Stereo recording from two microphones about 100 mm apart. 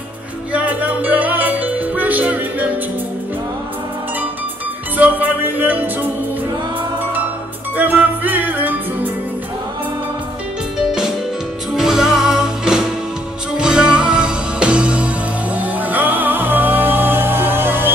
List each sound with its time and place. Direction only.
0.5 s music: 15° right (ahead or behind)
4.9 s music: 20° right (ahead or behind)
7.7 s music: 20° right (ahead or behind)
11.7 s music: 5° right (ahead or behind); by 17.9 s 20° right (ahead or behind)